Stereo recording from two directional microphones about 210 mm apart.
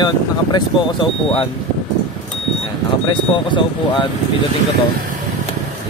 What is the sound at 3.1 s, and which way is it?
Speech, 25° left (ahead or behind).